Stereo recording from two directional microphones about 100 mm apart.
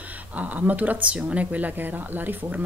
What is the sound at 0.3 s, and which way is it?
Speech, 15° right (ahead or behind).